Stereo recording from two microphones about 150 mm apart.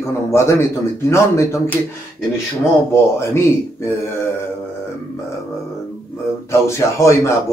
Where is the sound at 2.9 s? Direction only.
15° left (ahead or behind).